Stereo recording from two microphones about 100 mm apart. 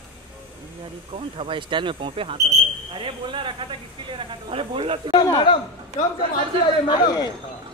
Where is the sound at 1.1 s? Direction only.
60° right (ahead or behind).